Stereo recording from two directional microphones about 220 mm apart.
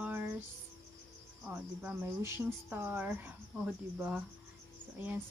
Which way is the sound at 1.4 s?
5° right (ahead or behind).